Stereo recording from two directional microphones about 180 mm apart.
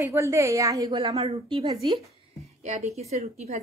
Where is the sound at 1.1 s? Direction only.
35° right (ahead or behind).